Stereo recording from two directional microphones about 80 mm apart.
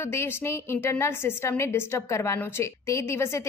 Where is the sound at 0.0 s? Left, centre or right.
Left.